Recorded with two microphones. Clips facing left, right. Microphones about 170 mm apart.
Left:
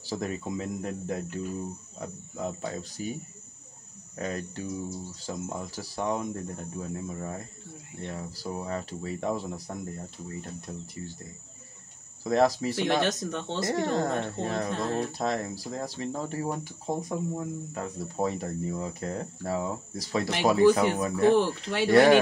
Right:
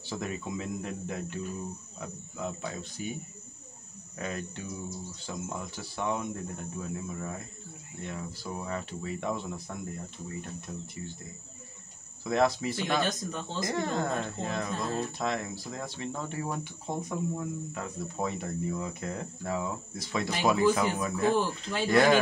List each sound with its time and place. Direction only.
0.0 s speech: 40° left (ahead or behind)
4.2 s speech: 35° left (ahead or behind)
12.2 s speech: 35° left (ahead or behind)
13.0 s speech: 75° left (ahead or behind)
13.7 s speech: 35° left (ahead or behind)
14.7 s speech: 70° left (ahead or behind)
15.1 s speech: 40° left (ahead or behind)
21.4 s speech: 70° left (ahead or behind)
21.9 s speech: 30° left (ahead or behind)